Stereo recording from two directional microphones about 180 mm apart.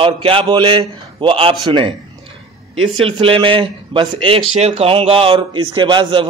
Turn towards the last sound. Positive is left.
turn(degrees=-25)  # may be behind; listen again after turning